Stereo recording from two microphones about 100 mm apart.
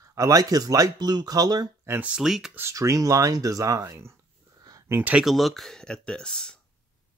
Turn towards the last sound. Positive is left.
turn(degrees=5)  # may be behind; listen again after turning